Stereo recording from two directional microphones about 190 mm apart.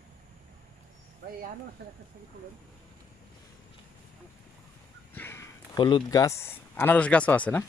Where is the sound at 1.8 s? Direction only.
55° right (ahead or behind).